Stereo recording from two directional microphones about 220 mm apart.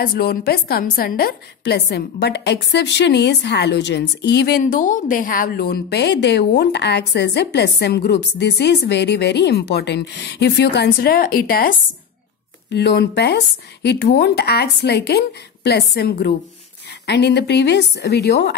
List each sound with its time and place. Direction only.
0.0 s a woman's voice: 45° left (ahead or behind)